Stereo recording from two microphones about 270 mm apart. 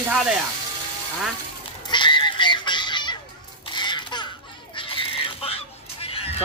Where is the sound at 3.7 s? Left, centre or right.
Centre.